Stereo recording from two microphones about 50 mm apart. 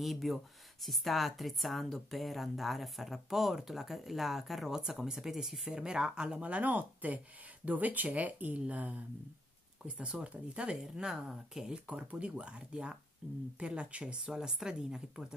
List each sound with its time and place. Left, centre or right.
0.0 s speech: centre
6.4 s speech: right; by 11.8 s centre
11.9 s speech: right